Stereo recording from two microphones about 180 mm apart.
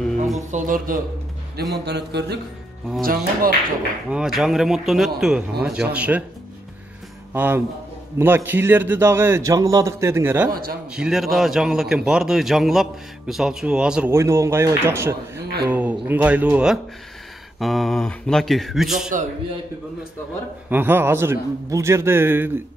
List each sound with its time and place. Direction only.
0.5 s speech: 50° right (ahead or behind)
1.6 s speech: 65° right (ahead or behind)
3.0 s speech: 55° right (ahead or behind)
4.1 s a man's voice: 5° right (ahead or behind)
7.3 s a man's voice: 10° right (ahead or behind)
10.5 s speech: 55° right (ahead or behind)
10.9 s speech: 5° right (ahead or behind)
14.1 s a man's voice: 15° right (ahead or behind)
20.7 s a man's voice: 10° right (ahead or behind)